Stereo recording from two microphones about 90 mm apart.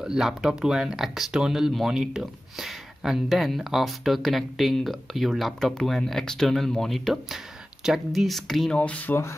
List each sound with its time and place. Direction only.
0.0 s speech: 5° right (ahead or behind)
8.7 s speech: 15° left (ahead or behind)